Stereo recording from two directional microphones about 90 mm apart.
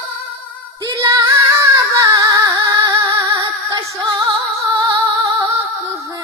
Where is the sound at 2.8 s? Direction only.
45° right (ahead or behind).